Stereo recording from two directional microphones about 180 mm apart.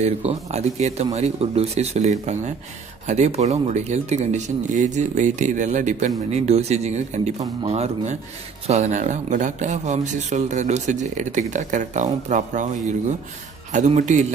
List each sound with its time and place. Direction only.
0.0 s speech: 35° right (ahead or behind)